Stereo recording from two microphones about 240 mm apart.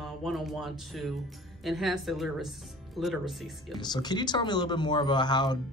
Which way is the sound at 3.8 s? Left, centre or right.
Centre.